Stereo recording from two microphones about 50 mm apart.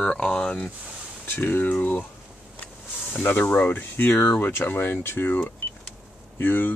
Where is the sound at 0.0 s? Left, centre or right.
Centre.